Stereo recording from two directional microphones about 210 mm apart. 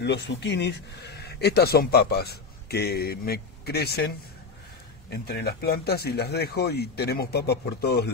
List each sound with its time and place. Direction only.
0.0 s speech: 55° left (ahead or behind)
5.1 s speech: 50° left (ahead or behind)